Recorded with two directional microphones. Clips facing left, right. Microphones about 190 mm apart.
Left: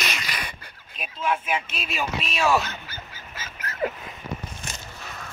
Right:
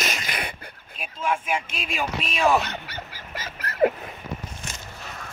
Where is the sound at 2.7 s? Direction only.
70° right (ahead or behind).